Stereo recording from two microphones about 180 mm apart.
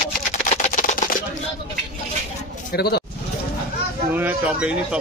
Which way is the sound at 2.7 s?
65° left (ahead or behind).